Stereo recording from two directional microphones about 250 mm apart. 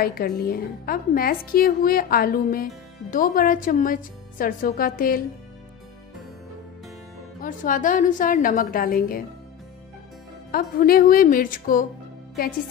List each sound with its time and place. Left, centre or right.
0.0 s a woman's voice: left
7.4 s a woman's voice: left
10.5 s a woman's voice: left